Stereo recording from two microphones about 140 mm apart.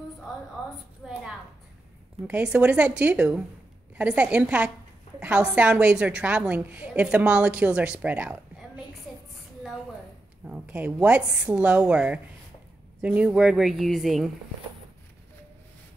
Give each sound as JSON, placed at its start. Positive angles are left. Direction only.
{"t": 1.0, "sound": "speech", "side_deg": -5}
{"t": 2.2, "sound": "a woman's voice", "side_deg": -10}
{"t": 10.4, "sound": "a woman's voice", "side_deg": -10}